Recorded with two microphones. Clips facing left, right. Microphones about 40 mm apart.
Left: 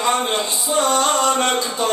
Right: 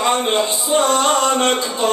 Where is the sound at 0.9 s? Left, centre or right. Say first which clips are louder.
Right 2 dB; right.